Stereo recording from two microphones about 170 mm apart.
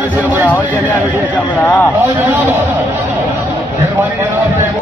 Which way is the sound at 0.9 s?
10° left (ahead or behind).